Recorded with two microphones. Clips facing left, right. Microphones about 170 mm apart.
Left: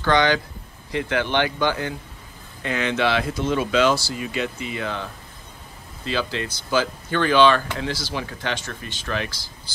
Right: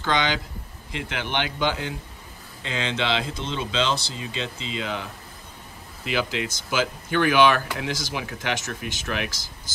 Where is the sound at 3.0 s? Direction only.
20° right (ahead or behind).